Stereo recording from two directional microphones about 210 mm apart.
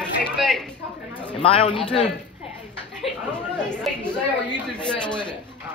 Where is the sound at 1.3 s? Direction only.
25° left (ahead or behind).